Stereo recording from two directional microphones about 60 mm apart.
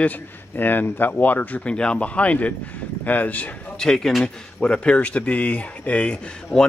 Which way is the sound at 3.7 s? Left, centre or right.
Centre.